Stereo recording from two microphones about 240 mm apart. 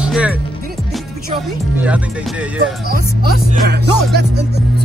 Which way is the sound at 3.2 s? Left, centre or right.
Right.